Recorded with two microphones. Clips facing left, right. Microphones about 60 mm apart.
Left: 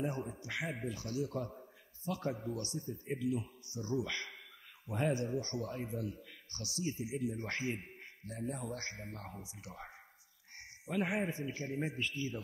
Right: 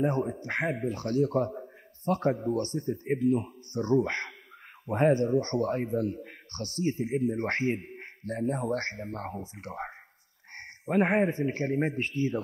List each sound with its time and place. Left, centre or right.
0.0 s a man's voice: right